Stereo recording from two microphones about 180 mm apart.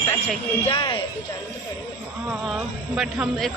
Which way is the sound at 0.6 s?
30° left (ahead or behind).